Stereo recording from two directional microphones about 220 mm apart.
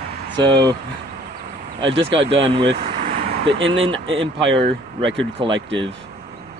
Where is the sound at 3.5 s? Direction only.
60° right (ahead or behind).